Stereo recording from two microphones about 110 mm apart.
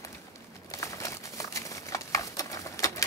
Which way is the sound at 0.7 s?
30° left (ahead or behind).